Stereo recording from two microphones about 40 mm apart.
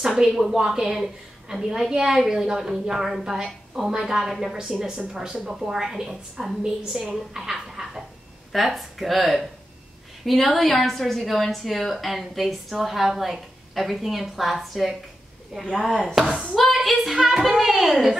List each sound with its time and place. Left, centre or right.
0.2 s a woman's voice: centre
4.8 s speech: centre
5.4 s a woman's voice: centre
16.2 s a woman's voice: centre
16.5 s a woman's voice: centre